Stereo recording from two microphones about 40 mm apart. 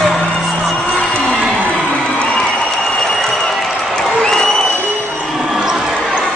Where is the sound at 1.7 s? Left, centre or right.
Left.